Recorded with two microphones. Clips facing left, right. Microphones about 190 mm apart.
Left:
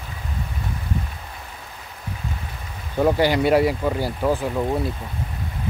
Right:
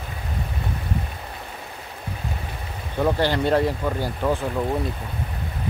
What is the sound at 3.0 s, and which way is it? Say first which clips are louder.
Speech: left 3 dB; 10° left (ahead or behind).